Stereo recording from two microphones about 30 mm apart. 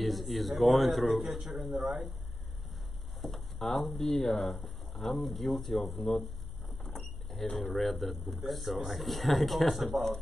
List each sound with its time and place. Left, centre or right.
0.0 s speech: centre
3.2 s speech: centre
6.8 s vehicle: centre
7.5 s speech: centre